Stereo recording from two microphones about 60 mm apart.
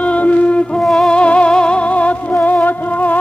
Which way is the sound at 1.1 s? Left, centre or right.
Centre.